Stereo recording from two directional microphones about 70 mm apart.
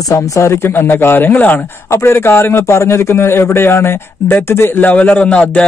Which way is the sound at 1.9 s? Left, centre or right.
Left.